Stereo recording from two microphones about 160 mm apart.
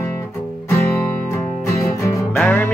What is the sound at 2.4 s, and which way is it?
Music, 10° left (ahead or behind).